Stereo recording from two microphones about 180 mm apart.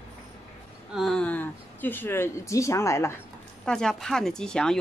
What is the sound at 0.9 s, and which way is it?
Speech, centre (ahead or behind).